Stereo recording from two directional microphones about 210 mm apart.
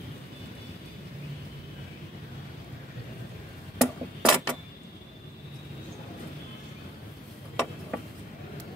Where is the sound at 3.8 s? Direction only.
Centre (ahead or behind).